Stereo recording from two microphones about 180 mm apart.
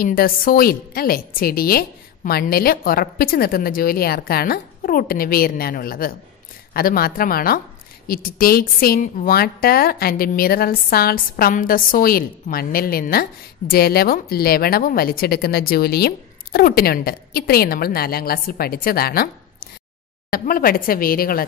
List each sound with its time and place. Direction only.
0.0 s a woman's voice: 55° left (ahead or behind)
20.2 s speech: 55° left (ahead or behind)